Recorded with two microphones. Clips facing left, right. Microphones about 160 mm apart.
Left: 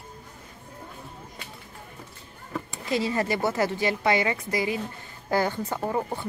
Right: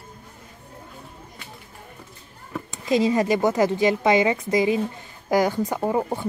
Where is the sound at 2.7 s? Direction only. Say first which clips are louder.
Right 7 dB; 20° right (ahead or behind).